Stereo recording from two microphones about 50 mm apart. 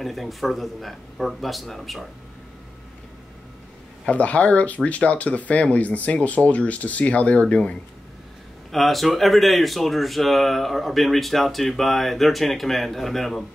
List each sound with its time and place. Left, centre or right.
0.0 s speech: centre
4.1 s speech: left
8.7 s speech: centre